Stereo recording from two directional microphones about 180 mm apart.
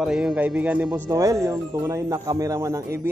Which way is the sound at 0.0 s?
5° right (ahead or behind).